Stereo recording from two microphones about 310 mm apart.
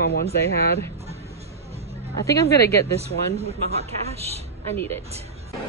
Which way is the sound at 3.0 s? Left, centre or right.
Centre.